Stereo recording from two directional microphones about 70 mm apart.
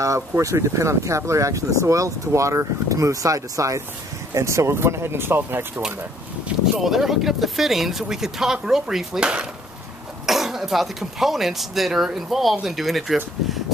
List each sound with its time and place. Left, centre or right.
0.3 s speech: right
6.8 s speech: centre